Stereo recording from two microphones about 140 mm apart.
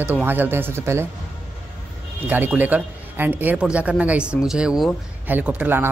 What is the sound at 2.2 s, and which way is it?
Speech, 15° right (ahead or behind).